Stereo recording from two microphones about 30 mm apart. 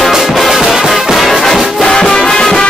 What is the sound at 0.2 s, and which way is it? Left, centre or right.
Music, centre.